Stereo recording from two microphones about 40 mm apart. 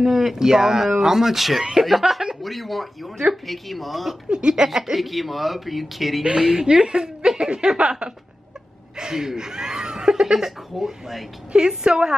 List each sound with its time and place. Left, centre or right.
0.0 s speech: centre
4.3 s a woman's voice: right
4.9 s speech: centre
6.2 s a woman's voice: centre
8.9 s a woman's voice: centre